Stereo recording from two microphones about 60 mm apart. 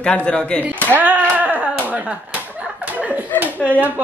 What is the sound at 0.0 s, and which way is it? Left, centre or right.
Speech, left.